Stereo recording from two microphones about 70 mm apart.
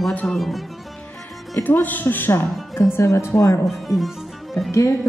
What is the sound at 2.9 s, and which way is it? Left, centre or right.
Speech, left.